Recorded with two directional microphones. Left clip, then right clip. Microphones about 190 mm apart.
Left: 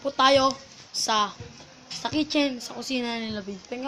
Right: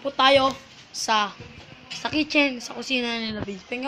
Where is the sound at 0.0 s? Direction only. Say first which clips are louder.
Right 1 dB; 5° left (ahead or behind).